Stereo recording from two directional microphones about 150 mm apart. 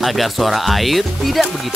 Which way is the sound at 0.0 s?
Centre (ahead or behind).